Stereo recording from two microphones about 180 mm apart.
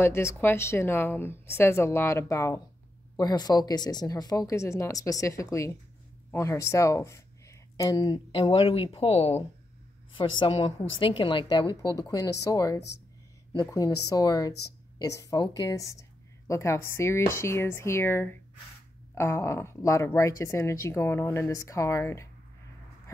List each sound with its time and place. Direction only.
0.0 s speech: 15° left (ahead or behind)